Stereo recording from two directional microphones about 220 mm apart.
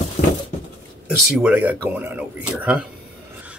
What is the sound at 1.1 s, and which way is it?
Speech, centre (ahead or behind).